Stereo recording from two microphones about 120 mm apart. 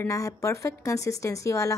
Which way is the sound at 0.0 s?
25° left (ahead or behind).